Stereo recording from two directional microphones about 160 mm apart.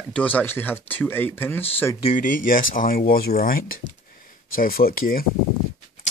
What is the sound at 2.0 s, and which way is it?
Speech, 55° left (ahead or behind).